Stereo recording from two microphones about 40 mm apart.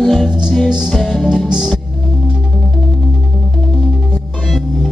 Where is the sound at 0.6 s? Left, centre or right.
Centre.